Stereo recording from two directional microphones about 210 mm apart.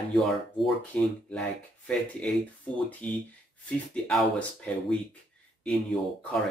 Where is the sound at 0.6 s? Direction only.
5° left (ahead or behind).